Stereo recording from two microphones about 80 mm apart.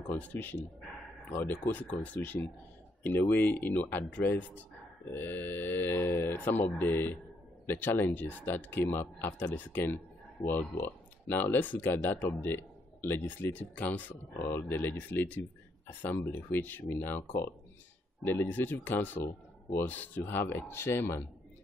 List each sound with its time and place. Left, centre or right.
0.2 s speech: left